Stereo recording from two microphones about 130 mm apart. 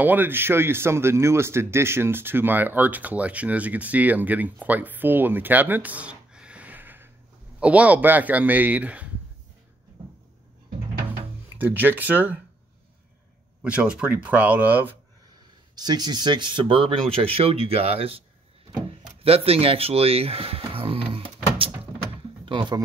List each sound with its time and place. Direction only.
0.0 s speech: 15° right (ahead or behind)
11.5 s speech: 15° right (ahead or behind)
13.6 s speech: 10° right (ahead or behind)
15.7 s a man's voice: 30° right (ahead or behind); by 18.2 s 50° right (ahead or behind)
19.2 s a man's voice: 45° right (ahead or behind)
20.7 s a sound: 45° right (ahead or behind)
22.4 s speech: 40° right (ahead or behind)